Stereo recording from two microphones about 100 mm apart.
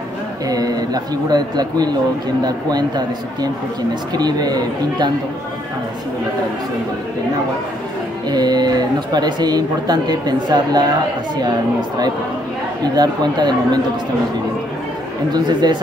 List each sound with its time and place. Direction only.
0.5 s speech: 40° right (ahead or behind)
4.1 s speech: 45° right (ahead or behind)
8.3 s speech: 45° right (ahead or behind)
12.8 s speech: 45° right (ahead or behind)
15.3 s speech: 45° right (ahead or behind)